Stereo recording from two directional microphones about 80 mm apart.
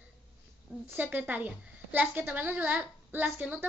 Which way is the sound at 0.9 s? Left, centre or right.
Right.